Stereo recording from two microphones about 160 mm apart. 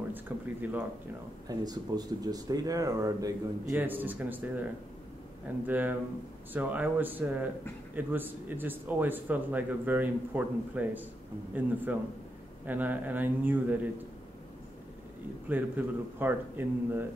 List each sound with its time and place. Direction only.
0.1 s speech: 10° right (ahead or behind)
1.5 s speech: 25° right (ahead or behind)
5.7 s speech: 10° right (ahead or behind)
15.4 s speech: 10° right (ahead or behind)